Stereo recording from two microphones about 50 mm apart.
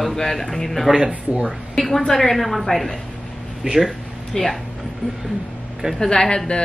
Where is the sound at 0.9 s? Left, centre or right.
Centre.